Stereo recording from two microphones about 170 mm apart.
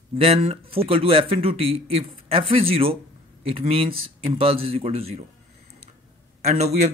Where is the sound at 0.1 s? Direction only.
35° right (ahead or behind).